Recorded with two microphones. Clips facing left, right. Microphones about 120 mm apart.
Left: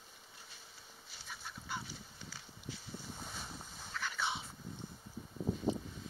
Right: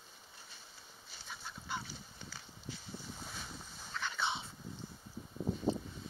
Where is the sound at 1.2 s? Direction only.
25° right (ahead or behind).